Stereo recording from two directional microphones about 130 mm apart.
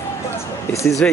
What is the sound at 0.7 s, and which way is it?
Speech, 25° left (ahead or behind).